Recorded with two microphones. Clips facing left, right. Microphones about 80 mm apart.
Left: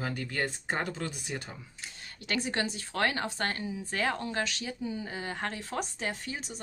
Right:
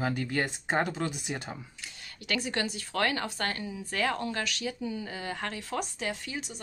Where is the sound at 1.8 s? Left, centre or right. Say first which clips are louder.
Even; left.